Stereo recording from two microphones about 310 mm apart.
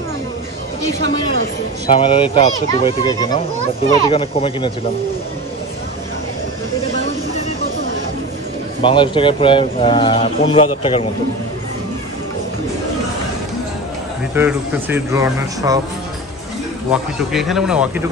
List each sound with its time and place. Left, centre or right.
1.9 s a man's voice: centre
8.8 s a man's voice: centre
14.3 s a man's voice: centre
16.9 s speech: centre